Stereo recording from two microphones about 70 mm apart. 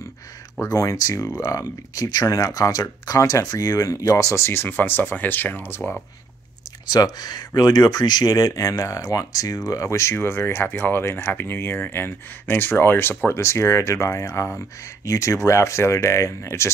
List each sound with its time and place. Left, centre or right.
0.6 s speech: left
2.0 s speech: left
6.9 s speech: left
13.4 s speech: left